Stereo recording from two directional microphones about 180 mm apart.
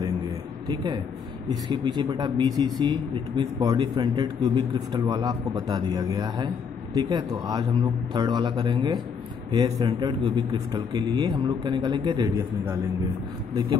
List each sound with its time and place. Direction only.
1.5 s a man's voice: 25° right (ahead or behind)